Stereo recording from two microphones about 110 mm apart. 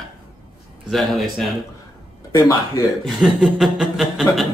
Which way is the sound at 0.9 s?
Centre (ahead or behind).